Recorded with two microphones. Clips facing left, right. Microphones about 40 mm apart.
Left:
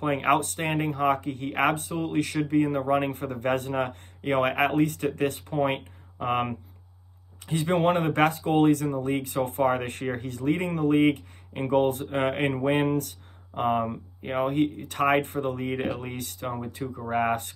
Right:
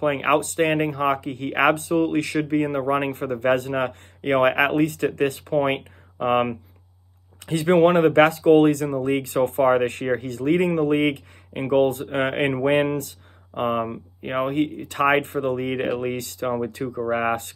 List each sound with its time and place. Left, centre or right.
0.0 s speech: right
6.1 s speech: right
7.4 s speech: right
13.6 s speech: right
14.3 s speech: right